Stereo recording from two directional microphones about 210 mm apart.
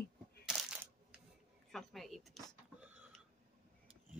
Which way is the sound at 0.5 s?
Centre (ahead or behind).